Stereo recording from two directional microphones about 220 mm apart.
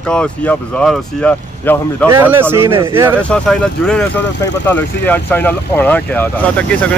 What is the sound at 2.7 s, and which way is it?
Speech, 25° right (ahead or behind).